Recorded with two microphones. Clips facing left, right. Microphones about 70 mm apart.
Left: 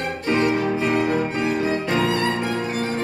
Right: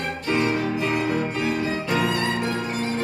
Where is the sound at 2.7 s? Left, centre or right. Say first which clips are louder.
Left 2 dB; left.